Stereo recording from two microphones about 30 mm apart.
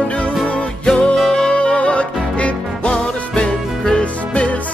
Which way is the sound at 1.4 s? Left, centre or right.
Left.